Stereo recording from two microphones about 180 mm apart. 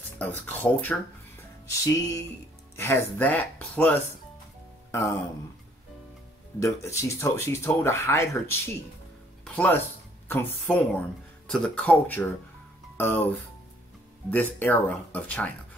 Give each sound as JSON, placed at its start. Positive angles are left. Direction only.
{"t": 0.2, "sound": "speech", "side_deg": 10}
{"t": 1.7, "sound": "music", "side_deg": 20}
{"t": 2.7, "sound": "speech", "side_deg": 15}
{"t": 6.6, "sound": "speech", "side_deg": 15}